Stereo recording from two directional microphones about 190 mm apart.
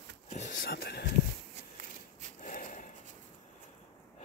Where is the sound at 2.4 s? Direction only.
45° left (ahead or behind).